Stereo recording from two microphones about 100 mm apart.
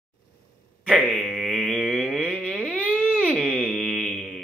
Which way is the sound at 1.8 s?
5° right (ahead or behind).